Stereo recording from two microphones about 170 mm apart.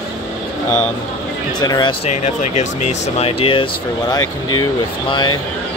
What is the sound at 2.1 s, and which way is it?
Speech, 40° left (ahead or behind).